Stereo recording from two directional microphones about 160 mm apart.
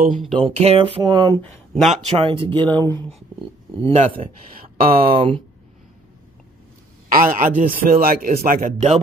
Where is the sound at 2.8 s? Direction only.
15° left (ahead or behind).